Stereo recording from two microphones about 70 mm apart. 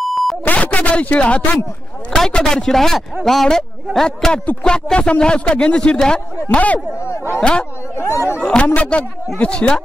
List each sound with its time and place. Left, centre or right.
0.0 s beep: centre
0.5 s speech: left
2.1 s speech: centre
6.5 s speech: left
7.9 s speech: left
8.4 s speech: centre